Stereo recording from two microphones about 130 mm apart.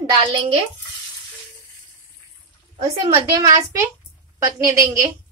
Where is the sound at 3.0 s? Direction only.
30° right (ahead or behind).